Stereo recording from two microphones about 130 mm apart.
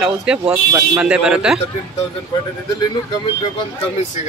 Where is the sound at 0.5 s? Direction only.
20° right (ahead or behind).